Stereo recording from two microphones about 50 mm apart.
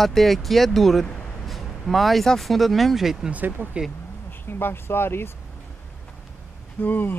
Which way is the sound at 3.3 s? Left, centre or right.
Right.